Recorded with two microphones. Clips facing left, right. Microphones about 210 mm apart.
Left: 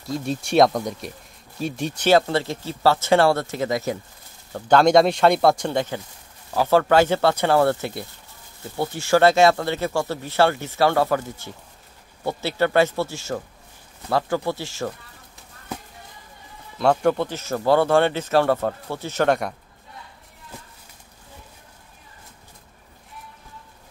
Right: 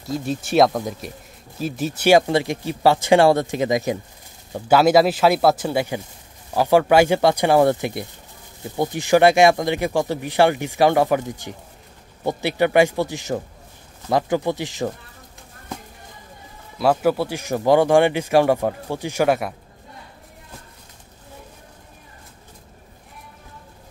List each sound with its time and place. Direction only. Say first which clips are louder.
0.0 s speech: right 1 dB; centre (ahead or behind); by 14.9 s 15° right (ahead or behind)
16.7 s speech: right 1 dB; 5° right (ahead or behind)